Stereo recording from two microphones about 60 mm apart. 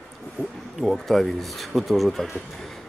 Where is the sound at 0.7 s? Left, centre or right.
Centre.